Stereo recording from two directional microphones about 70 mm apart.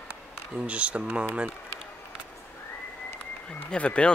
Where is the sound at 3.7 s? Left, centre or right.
Centre.